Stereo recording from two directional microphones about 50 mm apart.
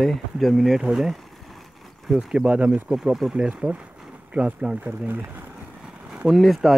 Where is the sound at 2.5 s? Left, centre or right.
Right.